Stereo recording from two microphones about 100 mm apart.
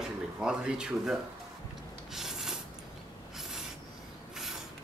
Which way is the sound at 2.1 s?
5° right (ahead or behind).